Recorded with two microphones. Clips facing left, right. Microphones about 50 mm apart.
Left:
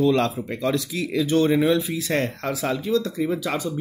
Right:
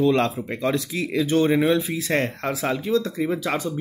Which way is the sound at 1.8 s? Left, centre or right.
Centre.